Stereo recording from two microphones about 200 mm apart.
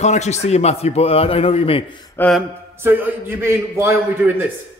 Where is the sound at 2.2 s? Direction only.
Centre (ahead or behind).